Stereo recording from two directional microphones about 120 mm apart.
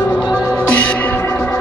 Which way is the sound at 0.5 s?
10° left (ahead or behind).